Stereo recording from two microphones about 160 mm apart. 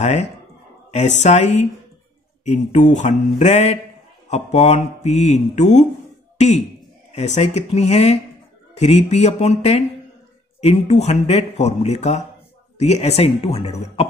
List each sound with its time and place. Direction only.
0.0 s speech: 45° left (ahead or behind)